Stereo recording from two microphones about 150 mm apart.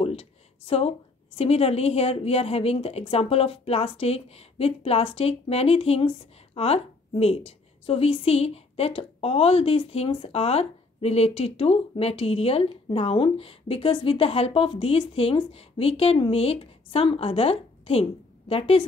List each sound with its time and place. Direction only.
0.0 s a woman's voice: 40° left (ahead or behind)